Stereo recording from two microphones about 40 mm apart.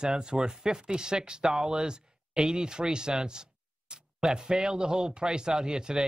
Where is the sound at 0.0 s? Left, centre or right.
Right.